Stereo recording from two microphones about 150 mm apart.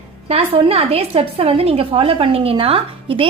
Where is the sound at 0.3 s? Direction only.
40° right (ahead or behind).